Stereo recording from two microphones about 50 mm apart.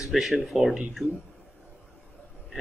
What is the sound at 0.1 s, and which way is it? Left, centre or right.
Speech, centre.